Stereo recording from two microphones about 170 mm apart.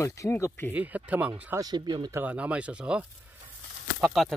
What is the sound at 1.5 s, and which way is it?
Speech, 25° right (ahead or behind).